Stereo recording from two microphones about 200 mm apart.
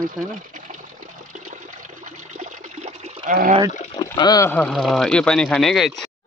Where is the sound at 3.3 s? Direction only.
35° right (ahead or behind).